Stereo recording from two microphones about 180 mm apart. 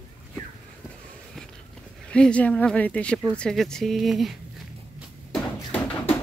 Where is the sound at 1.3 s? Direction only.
5° left (ahead or behind).